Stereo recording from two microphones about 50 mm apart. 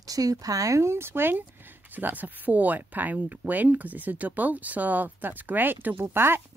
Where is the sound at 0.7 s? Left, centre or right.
Right.